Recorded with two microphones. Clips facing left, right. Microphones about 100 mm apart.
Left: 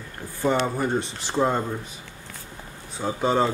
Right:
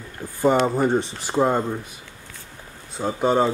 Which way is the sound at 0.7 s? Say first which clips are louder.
Right 5 dB; 20° right (ahead or behind).